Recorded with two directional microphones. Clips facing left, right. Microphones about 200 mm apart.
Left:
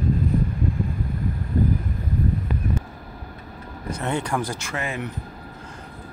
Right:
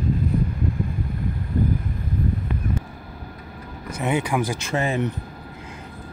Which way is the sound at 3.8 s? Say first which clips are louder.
Right 2 dB; 5° right (ahead or behind).